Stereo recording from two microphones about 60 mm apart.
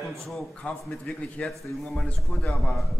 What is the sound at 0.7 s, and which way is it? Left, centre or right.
A man's voice, centre.